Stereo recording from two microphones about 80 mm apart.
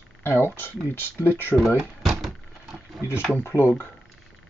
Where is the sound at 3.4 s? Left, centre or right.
Left.